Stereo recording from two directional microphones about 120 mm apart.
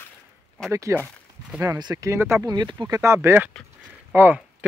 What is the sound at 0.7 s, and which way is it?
Speech, 25° right (ahead or behind).